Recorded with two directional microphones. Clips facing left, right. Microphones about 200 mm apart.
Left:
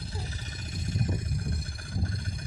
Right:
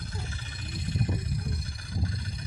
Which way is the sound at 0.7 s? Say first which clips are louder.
Right 1 dB; 45° left (ahead or behind).